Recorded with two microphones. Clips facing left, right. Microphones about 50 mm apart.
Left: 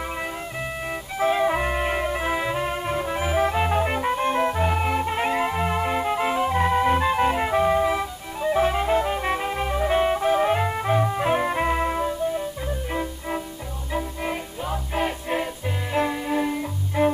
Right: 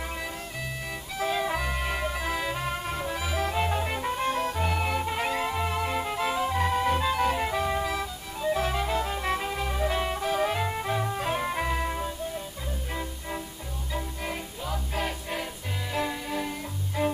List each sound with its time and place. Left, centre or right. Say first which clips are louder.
1.1 s music: left 7 dB; left
13.9 s music: left 6 dB; centre